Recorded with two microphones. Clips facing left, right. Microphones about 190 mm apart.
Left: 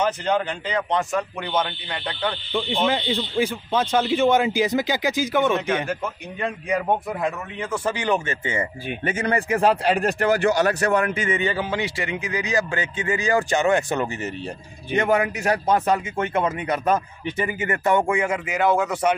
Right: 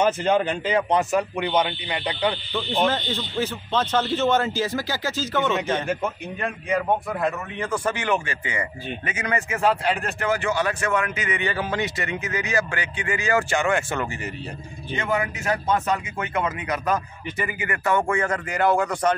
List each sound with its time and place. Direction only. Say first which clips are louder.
0.0 s speech: right 2 dB; 15° right (ahead or behind)
2.9 s a man's voice: left 3 dB; 15° left (ahead or behind)
11.5 s a man's voice: left 1 dB; 15° left (ahead or behind)
15.0 s a man's voice: left 2 dB; 40° left (ahead or behind); by 19.1 s 5° left (ahead or behind)